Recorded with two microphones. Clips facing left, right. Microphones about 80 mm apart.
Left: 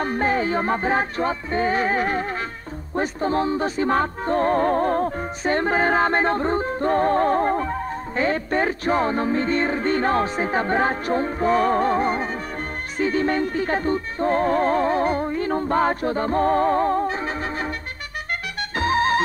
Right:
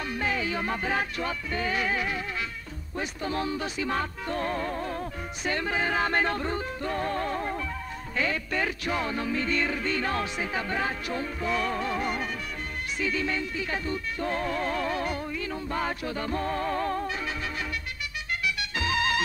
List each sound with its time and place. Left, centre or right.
0.0 s speech: left
18.8 s music: left